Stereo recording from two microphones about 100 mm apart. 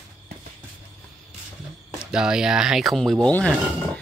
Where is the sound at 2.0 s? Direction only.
5° right (ahead or behind).